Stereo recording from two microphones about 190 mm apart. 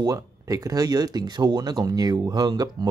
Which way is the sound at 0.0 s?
20° right (ahead or behind).